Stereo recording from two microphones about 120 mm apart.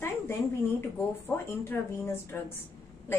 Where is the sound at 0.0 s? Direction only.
20° left (ahead or behind).